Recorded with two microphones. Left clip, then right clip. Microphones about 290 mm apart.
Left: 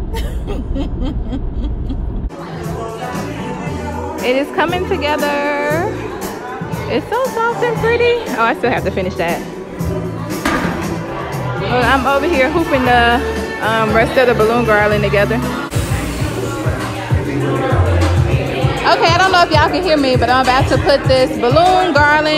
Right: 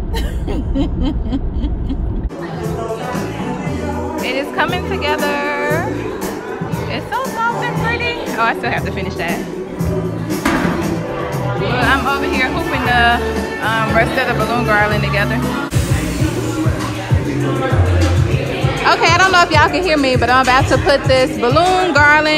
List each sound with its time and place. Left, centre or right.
4.2 s music: left
7.1 s speech: left
10.5 s music: left
11.7 s speech: left
13.0 s music: left
18.9 s speech: centre